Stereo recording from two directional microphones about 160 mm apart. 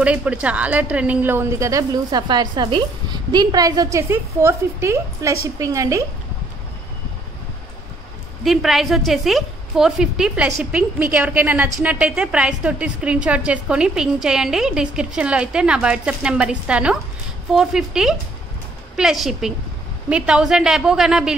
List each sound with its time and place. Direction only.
0.0 s a woman's voice: 10° right (ahead or behind)
8.5 s a woman's voice: centre (ahead or behind)